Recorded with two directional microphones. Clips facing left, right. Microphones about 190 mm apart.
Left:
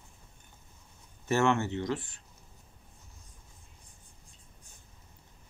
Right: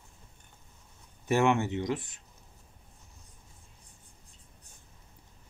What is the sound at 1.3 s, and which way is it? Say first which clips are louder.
Speech: right 1 dB; 15° right (ahead or behind).